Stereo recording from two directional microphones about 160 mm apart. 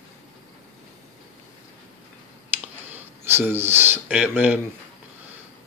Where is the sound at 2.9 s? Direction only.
15° right (ahead or behind).